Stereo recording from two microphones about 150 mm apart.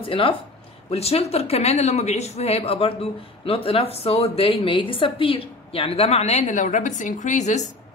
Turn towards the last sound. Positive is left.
turn(degrees=50)  # may be behind; listen again after turning